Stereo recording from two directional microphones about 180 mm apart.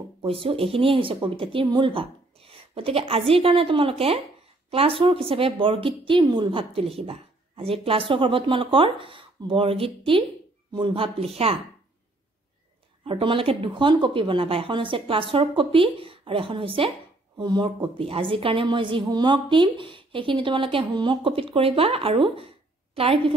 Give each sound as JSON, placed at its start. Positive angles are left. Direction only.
{"t": 0.2, "sound": "a woman's voice", "side_deg": -30}
{"t": 13.0, "sound": "a woman's voice", "side_deg": -30}